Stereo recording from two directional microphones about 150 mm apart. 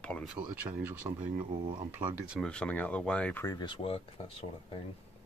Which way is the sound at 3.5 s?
30° left (ahead or behind).